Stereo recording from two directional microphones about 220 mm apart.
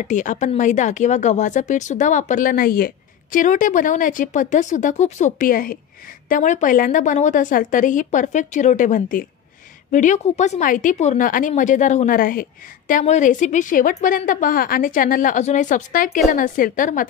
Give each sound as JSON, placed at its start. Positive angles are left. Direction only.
{"t": 0.1, "sound": "speech", "side_deg": 35}